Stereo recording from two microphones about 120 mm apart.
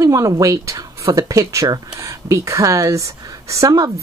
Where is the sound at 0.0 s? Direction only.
25° right (ahead or behind).